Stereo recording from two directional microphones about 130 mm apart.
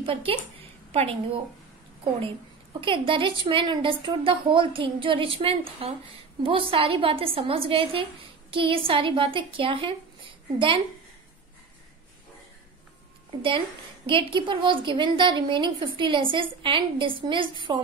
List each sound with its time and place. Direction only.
0.0 s a woman's voice: 45° right (ahead or behind)
2.8 s a woman's voice: 40° right (ahead or behind)
14.0 s a woman's voice: 40° right (ahead or behind)